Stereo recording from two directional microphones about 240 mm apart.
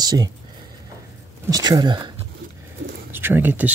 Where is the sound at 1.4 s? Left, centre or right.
Centre.